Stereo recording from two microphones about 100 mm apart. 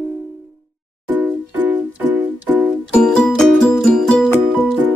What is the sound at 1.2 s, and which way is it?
Music, 20° right (ahead or behind).